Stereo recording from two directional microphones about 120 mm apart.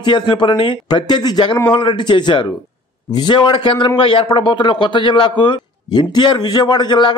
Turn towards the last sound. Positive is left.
turn(degrees=40)  # may be behind; listen again after turning